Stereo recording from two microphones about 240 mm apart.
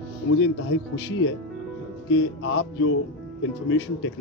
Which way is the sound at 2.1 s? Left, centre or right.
Left.